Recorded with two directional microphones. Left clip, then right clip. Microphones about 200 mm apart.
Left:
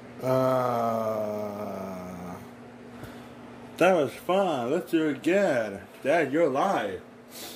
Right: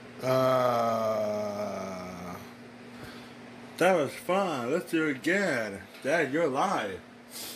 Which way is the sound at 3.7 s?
10° right (ahead or behind).